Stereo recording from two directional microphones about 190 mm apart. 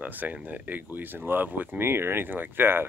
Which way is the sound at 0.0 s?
10° right (ahead or behind).